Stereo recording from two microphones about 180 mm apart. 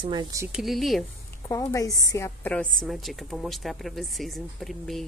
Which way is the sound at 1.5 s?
20° left (ahead or behind).